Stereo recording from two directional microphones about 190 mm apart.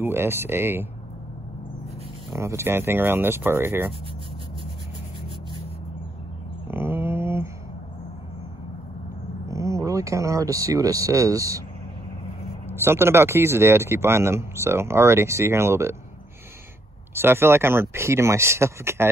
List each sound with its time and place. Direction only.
0.0 s speech: 10° right (ahead or behind)
2.3 s speech: 15° right (ahead or behind)
6.7 s a sound: 10° right (ahead or behind)
9.5 s speech: 15° right (ahead or behind)
12.6 s speech: 10° right (ahead or behind)
17.1 s speech: 10° right (ahead or behind)